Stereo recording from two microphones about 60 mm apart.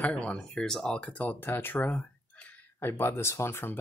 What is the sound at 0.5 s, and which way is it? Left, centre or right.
Speech, centre.